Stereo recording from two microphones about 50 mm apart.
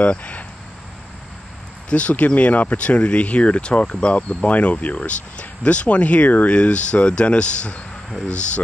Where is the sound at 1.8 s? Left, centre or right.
Left.